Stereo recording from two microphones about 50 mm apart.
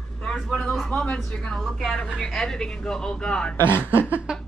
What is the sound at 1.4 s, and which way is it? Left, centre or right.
Speech, centre.